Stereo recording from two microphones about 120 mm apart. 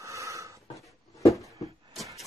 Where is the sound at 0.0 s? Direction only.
25° right (ahead or behind).